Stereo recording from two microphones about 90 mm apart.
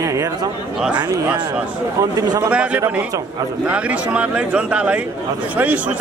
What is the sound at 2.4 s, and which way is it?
Speech, 15° right (ahead or behind).